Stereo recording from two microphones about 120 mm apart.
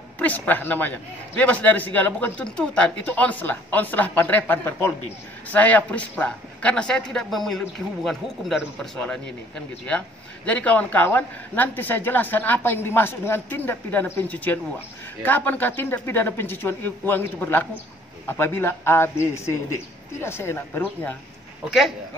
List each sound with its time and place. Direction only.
0.2 s a man's voice: 15° left (ahead or behind)
21.6 s speech: centre (ahead or behind)